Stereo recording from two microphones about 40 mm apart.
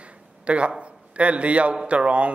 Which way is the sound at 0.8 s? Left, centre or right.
Right.